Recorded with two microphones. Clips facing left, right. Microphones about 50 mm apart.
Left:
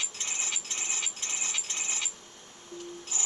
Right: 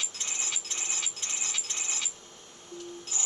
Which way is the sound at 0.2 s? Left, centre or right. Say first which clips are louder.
Left 1 dB; centre.